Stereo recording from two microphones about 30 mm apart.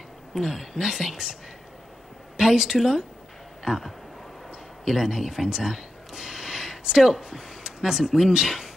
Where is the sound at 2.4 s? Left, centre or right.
Centre.